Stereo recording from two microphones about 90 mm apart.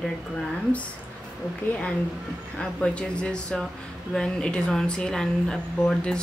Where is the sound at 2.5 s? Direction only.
10° left (ahead or behind).